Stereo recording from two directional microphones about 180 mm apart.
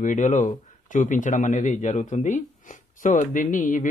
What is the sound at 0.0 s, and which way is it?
A man's voice, 45° left (ahead or behind).